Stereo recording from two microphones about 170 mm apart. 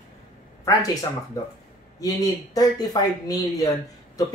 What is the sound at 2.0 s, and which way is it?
Speech, 20° left (ahead or behind).